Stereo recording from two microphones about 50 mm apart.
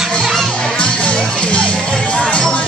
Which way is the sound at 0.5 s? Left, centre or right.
Centre.